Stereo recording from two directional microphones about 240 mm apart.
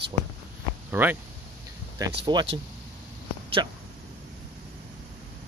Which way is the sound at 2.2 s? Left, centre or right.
Centre.